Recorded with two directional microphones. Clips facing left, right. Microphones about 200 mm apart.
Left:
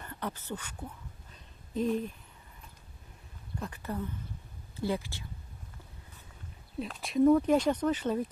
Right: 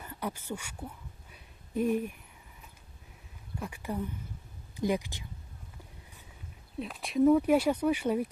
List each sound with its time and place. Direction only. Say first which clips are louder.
0.0 s a sound: right 1 dB; 10° right (ahead or behind)
3.5 s speech: right 1 dB; 10° right (ahead or behind)
6.8 s speech: even; centre (ahead or behind)